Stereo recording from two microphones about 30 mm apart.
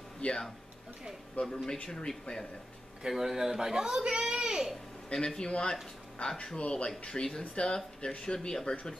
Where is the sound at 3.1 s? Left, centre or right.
Centre.